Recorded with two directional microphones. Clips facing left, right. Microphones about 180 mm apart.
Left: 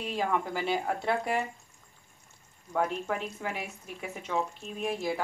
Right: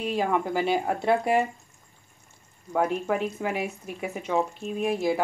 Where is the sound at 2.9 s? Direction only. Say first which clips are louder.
Right 7 dB; 10° right (ahead or behind).